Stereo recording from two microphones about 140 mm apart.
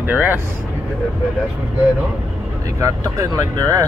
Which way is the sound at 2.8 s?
25° right (ahead or behind).